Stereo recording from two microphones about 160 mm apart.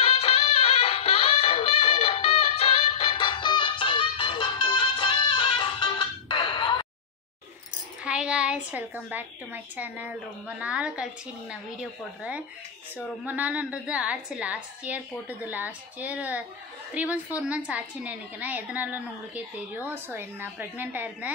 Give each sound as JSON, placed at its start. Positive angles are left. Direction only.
{"t": 0.0, "sound": "music", "side_deg": 40}
{"t": 8.0, "sound": "a woman's voice", "side_deg": -5}